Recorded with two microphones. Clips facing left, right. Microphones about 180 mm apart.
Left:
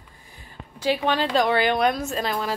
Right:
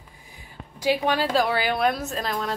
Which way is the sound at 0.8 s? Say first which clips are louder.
Even; 10° right (ahead or behind).